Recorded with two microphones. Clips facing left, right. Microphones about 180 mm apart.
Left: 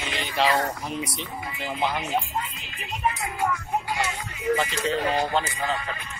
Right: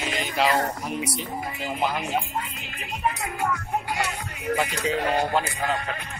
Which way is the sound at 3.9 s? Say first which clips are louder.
Even; 60° right (ahead or behind).